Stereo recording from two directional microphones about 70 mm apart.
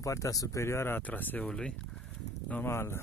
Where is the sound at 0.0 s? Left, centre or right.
Left.